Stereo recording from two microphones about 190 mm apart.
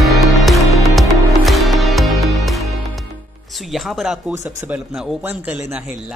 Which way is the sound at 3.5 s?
Centre (ahead or behind).